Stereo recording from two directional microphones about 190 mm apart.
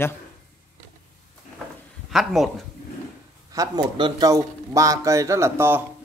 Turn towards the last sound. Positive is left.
turn(degrees=-15)  # may be behind; listen again after turning